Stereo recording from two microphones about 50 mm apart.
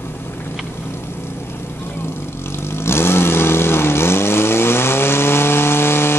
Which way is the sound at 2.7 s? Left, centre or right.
Left.